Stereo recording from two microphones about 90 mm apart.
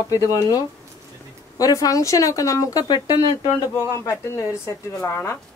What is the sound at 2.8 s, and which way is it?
Speech, 50° left (ahead or behind).